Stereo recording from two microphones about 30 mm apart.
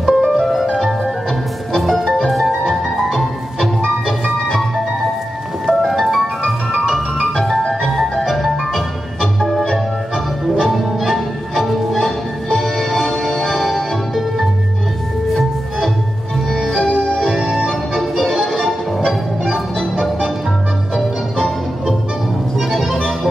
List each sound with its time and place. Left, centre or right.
0.0 s music: centre
0.4 s music: centre
1.8 s music: centre
5.7 s music: centre
11.1 s music: centre
16.4 s music: centre
17.0 s organ: centre
17.5 s music: centre
22.6 s music: centre
22.8 s music: centre